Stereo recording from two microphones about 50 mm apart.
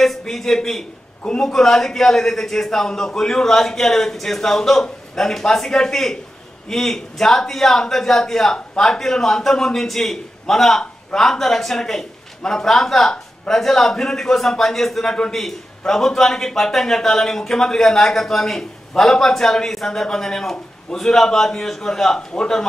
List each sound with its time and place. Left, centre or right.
0.2 s a man's voice: centre
1.5 s a man's voice: centre